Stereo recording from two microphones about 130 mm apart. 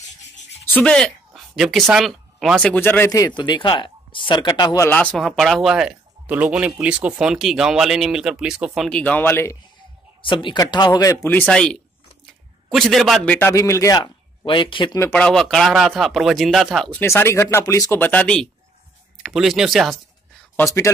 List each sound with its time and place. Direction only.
0.7 s speech: 10° left (ahead or behind)
2.7 s speech: 15° left (ahead or behind)
3.1 s speech: 30° left (ahead or behind)
4.8 s speech: 10° left (ahead or behind)
5.2 s speech: centre (ahead or behind)
8.8 s speech: 10° left (ahead or behind)
10.2 s speech: 40° left (ahead or behind)
11.2 s speech: 10° left (ahead or behind)
13.5 s speech: 20° left (ahead or behind)
14.4 s speech: 40° left (ahead or behind)
15.1 s speech: 5° left (ahead or behind)
16.9 s speech: 20° left (ahead or behind); by 20.0 s centre (ahead or behind)
20.8 s speech: 20° left (ahead or behind)